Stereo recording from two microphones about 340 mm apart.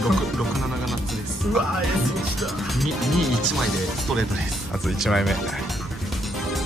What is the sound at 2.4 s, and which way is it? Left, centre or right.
Music, centre.